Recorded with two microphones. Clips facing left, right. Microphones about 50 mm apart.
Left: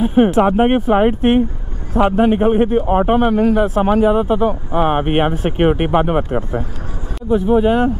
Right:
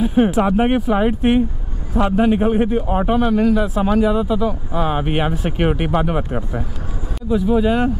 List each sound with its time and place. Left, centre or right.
0.0 s a man's voice: left
7.2 s speech: left